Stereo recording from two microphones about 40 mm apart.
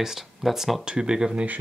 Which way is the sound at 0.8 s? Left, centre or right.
Right.